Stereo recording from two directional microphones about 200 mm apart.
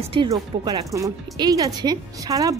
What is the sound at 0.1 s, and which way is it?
Speech, 20° right (ahead or behind).